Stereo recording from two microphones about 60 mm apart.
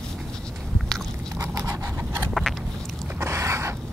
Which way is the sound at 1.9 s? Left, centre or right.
Right.